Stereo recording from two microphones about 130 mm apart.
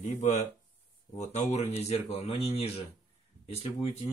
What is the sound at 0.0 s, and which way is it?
Speech, 70° left (ahead or behind).